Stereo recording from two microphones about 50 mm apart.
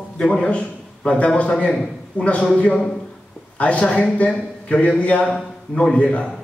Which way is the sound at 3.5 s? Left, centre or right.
Left.